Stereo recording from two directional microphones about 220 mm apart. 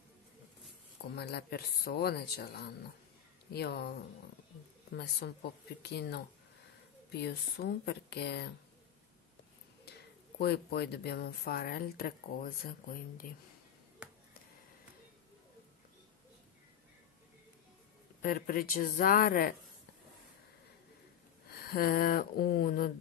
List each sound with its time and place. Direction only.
1.1 s speech: 45° left (ahead or behind)
4.9 s speech: 45° left (ahead or behind)
9.9 s a sound: 45° left (ahead or behind)
10.4 s speech: 50° left (ahead or behind)
18.2 s speech: 40° left (ahead or behind)
21.5 s speech: 45° left (ahead or behind)